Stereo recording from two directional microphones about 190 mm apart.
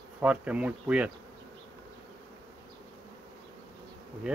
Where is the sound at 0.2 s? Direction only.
5° right (ahead or behind).